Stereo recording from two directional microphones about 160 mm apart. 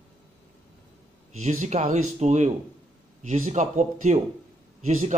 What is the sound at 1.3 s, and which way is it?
A man's voice, 50° right (ahead or behind).